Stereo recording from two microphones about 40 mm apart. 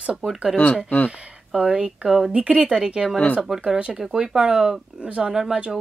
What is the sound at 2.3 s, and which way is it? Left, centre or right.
Speech, right.